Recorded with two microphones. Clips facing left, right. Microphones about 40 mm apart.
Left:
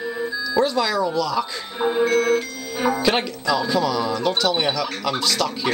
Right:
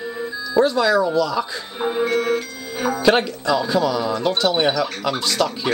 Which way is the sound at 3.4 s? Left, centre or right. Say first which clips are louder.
Right 2 dB; centre.